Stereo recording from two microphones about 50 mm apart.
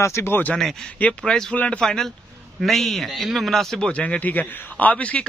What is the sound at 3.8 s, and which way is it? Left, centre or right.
A man's voice, left.